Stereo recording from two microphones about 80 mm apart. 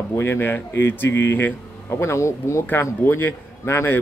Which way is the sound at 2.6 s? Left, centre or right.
Left.